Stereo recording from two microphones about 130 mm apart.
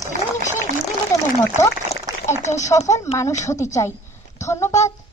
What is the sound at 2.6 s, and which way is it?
A woman's voice, 25° left (ahead or behind).